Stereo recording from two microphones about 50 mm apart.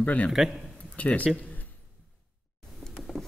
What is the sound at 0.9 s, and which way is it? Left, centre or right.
Speech, left.